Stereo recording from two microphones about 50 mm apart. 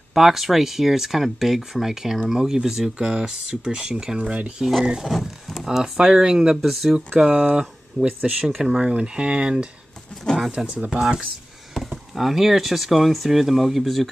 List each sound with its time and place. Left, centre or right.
0.1 s speech: centre
5.1 s a sound: centre
5.9 s speech: centre
10.3 s speech: centre
11.7 s speech: centre